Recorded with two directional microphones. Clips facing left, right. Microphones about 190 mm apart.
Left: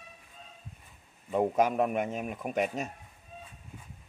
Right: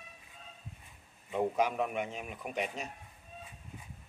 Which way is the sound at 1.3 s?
45° left (ahead or behind).